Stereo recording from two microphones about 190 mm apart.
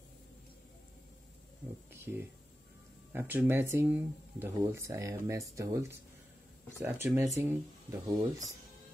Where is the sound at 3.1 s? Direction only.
10° right (ahead or behind).